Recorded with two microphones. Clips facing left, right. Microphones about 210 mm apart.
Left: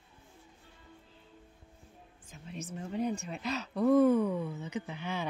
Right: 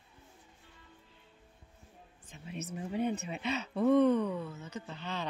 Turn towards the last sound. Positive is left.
turn(degrees=10)  # may be behind; listen again after turning